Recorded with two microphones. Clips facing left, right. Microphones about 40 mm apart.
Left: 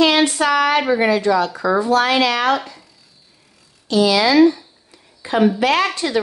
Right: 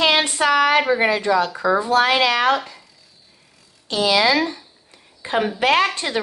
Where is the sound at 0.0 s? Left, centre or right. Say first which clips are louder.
Left 2 dB; right.